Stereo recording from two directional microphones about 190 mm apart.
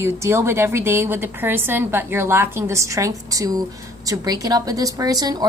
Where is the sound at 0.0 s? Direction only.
15° right (ahead or behind).